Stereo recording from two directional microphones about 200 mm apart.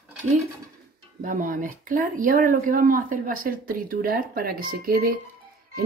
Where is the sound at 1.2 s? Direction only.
40° right (ahead or behind).